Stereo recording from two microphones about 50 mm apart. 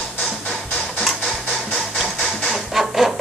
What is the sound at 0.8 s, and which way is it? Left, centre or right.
Mechanisms, centre.